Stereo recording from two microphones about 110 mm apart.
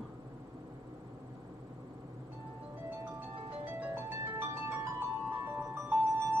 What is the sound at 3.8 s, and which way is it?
Music, 20° right (ahead or behind).